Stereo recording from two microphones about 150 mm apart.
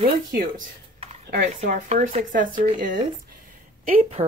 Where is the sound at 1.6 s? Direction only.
55° right (ahead or behind).